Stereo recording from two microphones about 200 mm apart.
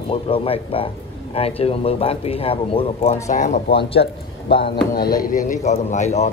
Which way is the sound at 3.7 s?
55° left (ahead or behind).